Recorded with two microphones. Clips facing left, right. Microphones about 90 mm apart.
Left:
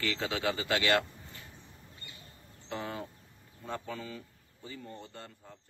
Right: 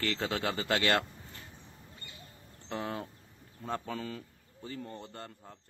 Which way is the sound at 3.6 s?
40° right (ahead or behind).